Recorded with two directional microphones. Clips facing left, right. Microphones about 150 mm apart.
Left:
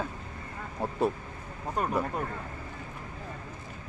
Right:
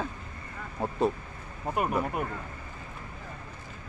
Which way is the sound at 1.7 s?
10° right (ahead or behind).